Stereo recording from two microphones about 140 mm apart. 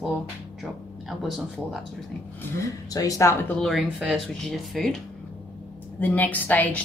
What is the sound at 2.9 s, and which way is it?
Speech, 25° left (ahead or behind).